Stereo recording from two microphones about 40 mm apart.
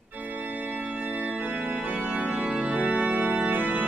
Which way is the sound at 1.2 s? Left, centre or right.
Right.